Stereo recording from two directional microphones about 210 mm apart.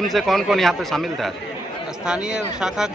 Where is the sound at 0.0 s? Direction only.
Centre (ahead or behind).